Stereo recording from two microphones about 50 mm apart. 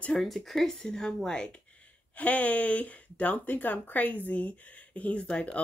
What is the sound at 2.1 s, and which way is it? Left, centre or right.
Speech, left.